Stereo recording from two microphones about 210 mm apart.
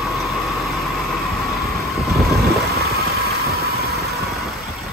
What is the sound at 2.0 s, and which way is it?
Vehicle, centre (ahead or behind).